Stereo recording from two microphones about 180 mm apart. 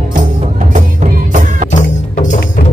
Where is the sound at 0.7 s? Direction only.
45° right (ahead or behind).